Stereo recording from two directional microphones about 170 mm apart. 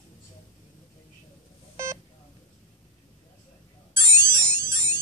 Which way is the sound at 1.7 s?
15° right (ahead or behind).